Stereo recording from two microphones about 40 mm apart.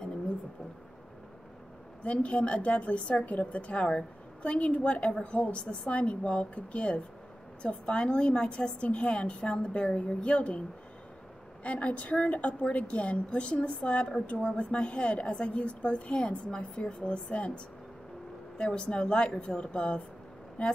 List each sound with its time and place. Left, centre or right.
2.0 s a woman's voice: left
11.6 s a woman's voice: left; by 16.9 s centre
17.0 s a woman's voice: left
18.6 s a woman's voice: left